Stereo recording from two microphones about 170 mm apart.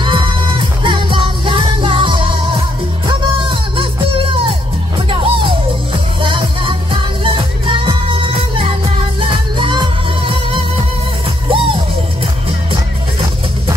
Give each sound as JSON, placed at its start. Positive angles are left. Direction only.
{"t": 0.0, "sound": "music", "side_deg": -30}